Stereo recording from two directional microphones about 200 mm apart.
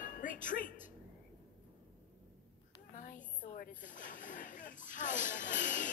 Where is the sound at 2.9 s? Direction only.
40° left (ahead or behind).